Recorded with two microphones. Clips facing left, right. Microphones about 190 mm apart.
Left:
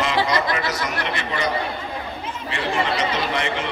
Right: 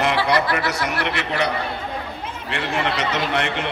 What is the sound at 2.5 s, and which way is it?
Speech, 65° right (ahead or behind).